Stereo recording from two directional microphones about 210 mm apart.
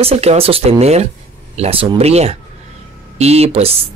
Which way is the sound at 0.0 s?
30° right (ahead or behind).